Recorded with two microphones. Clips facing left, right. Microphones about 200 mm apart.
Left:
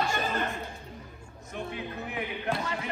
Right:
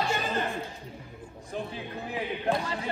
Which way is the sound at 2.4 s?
35° right (ahead or behind).